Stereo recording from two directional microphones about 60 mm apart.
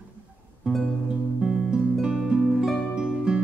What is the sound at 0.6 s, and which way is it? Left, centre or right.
Music, centre.